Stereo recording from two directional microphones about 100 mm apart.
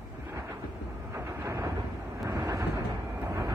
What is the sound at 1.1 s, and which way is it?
Vehicle, 30° right (ahead or behind).